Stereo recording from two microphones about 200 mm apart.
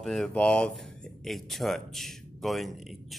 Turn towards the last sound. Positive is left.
turn(degrees=0)  # may be behind; listen again after turning